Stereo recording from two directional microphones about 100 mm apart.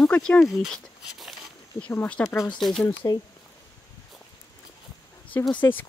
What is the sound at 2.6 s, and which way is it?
Speech, 5° left (ahead or behind).